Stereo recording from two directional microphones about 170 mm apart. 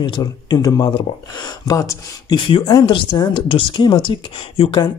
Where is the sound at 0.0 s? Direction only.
25° left (ahead or behind).